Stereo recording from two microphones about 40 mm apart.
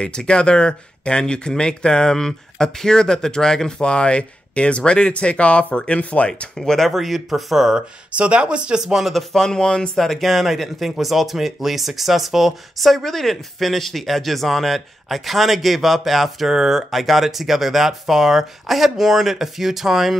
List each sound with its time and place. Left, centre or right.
0.0 s speech: left
6.6 s speech: centre
7.7 s speech: right
8.8 s speech: centre
9.1 s speech: centre
9.9 s speech: centre